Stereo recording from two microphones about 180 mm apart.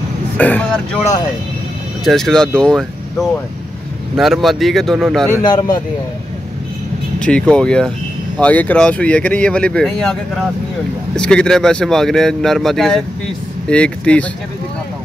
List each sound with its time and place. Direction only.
0.4 s speech: 10° left (ahead or behind)
2.0 s speech: centre (ahead or behind)
5.4 s a man's voice: 25° left (ahead or behind)
7.2 s speech: 5° left (ahead or behind)